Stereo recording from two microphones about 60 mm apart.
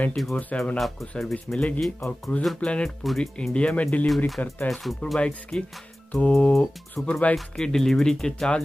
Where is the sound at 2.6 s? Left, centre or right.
Centre.